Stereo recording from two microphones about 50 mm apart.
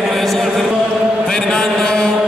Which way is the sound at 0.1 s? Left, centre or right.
Centre.